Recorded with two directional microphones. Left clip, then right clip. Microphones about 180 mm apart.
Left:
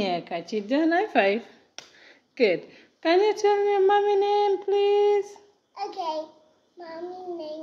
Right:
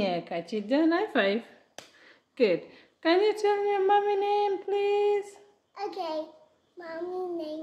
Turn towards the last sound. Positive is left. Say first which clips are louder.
# right 1 dB
turn(degrees=-10)  # may be behind; listen again after turning